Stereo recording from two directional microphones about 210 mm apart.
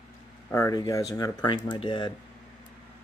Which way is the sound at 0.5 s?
15° left (ahead or behind).